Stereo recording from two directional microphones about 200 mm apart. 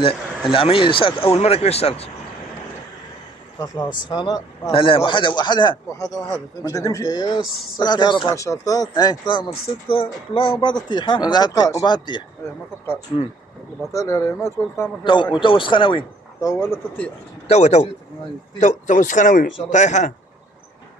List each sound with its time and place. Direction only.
0.5 s speech: 25° left (ahead or behind)
3.5 s speech: 20° left (ahead or behind)
13.9 s speech: 15° left (ahead or behind)
17.5 s a man's voice: 35° left (ahead or behind)